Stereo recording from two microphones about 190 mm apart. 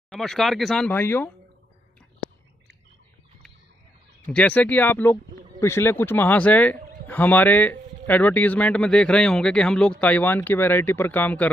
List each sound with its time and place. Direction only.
0.1 s speech: centre (ahead or behind)
4.3 s a man's voice: 10° left (ahead or behind)